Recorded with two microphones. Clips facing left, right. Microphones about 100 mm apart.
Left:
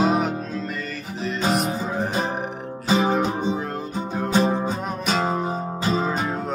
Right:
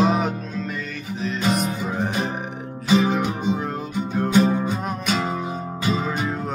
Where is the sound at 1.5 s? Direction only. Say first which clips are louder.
Left 1 dB; centre (ahead or behind).